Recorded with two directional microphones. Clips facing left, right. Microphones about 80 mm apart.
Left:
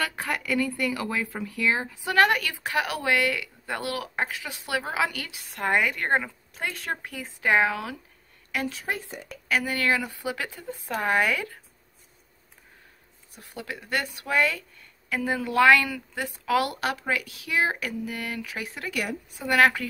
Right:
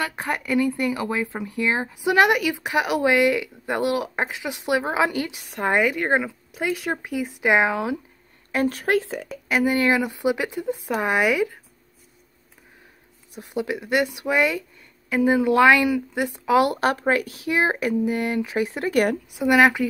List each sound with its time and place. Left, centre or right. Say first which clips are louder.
0.0 s speech: right 3 dB; right
8.8 s speech: right 11 dB; right
9.5 s speech: right 5 dB; right
13.3 s speech: right 10 dB; right
16.7 s speech: right 7 dB; right
19.3 s speech: right 3 dB; centre